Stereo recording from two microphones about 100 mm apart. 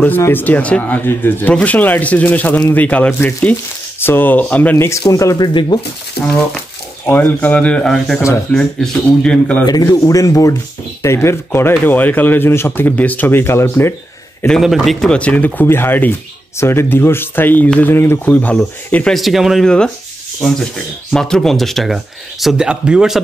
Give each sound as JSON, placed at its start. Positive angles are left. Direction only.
{"t": 0.2, "sound": "speech", "side_deg": 20}
{"t": 5.1, "sound": "speech", "side_deg": 35}
{"t": 5.5, "sound": "speech", "side_deg": 50}
{"t": 7.1, "sound": "speech", "side_deg": 20}
{"t": 9.7, "sound": "speech", "side_deg": 40}
{"t": 14.5, "sound": "speech", "side_deg": 0}
{"t": 18.2, "sound": "speech", "side_deg": 15}
{"t": 19.1, "sound": "speech", "side_deg": 0}